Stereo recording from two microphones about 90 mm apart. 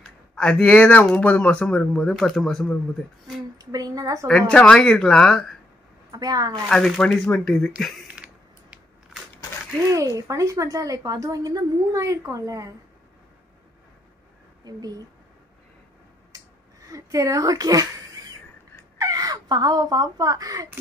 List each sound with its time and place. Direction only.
0.4 s speech: 10° left (ahead or behind)
3.5 s a woman's voice: 40° right (ahead or behind)
4.3 s speech: 15° left (ahead or behind)
6.1 s speech: 45° right (ahead or behind)
6.7 s speech: 5° left (ahead or behind)
7.2 s speech: 15° left (ahead or behind)
8.1 s a sound: 15° right (ahead or behind)
9.8 s a woman's voice: 35° right (ahead or behind)
14.6 s speech: 45° right (ahead or behind)
16.3 s a sound: 40° right (ahead or behind)
18.9 s speech: 45° right (ahead or behind)